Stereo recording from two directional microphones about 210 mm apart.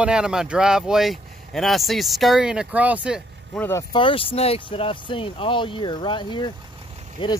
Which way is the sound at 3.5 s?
10° left (ahead or behind).